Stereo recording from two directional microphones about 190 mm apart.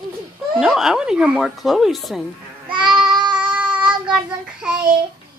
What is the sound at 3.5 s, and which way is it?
Child singing, 5° right (ahead or behind).